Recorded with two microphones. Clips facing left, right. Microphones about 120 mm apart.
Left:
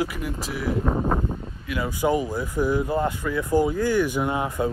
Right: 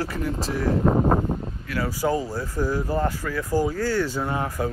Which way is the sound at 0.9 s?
20° right (ahead or behind).